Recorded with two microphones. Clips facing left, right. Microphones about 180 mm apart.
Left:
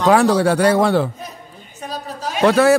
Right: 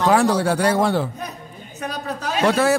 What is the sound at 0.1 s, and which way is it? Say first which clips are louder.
Speech: left 7 dB; 70° left (ahead or behind).